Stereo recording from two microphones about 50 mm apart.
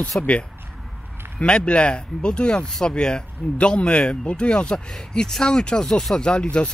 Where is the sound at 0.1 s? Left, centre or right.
Left.